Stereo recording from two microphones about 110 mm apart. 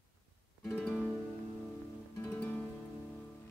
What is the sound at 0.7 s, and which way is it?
Music, 10° left (ahead or behind).